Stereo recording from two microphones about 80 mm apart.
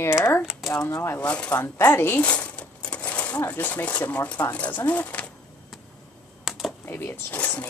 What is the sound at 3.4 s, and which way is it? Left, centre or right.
Speech, left.